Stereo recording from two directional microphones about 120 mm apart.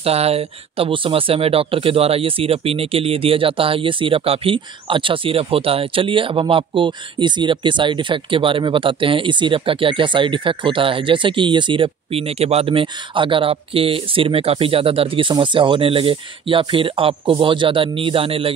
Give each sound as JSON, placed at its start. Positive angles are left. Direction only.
{"t": 0.0, "sound": "speech", "side_deg": -60}